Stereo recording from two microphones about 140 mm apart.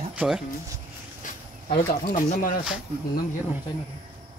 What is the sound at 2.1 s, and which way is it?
Speech, 75° left (ahead or behind).